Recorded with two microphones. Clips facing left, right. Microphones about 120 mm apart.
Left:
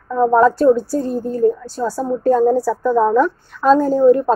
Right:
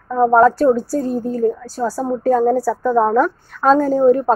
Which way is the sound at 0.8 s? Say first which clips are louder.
Even; centre (ahead or behind).